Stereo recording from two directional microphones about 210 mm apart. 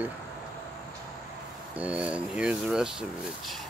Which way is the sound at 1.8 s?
5° right (ahead or behind).